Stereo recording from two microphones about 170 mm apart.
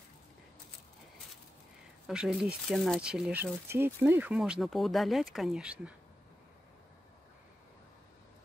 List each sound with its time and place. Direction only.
2.0 s speech: 5° right (ahead or behind)